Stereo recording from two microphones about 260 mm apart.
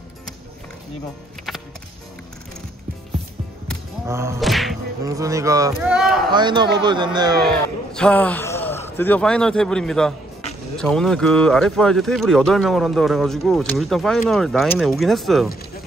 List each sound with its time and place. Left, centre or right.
4.1 s speech: centre
4.4 s thump: centre
5.0 s speech: centre
6.3 s speech: centre
7.4 s a man's voice: centre